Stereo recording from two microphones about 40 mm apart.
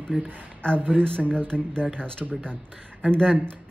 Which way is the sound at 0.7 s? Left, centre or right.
Right.